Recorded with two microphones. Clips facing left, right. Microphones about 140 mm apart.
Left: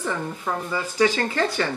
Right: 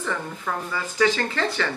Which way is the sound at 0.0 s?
20° left (ahead or behind).